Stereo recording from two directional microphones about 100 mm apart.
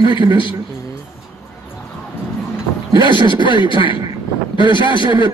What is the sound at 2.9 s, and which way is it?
Speech, 55° left (ahead or behind).